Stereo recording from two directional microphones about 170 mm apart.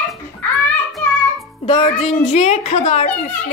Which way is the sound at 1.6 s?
35° left (ahead or behind).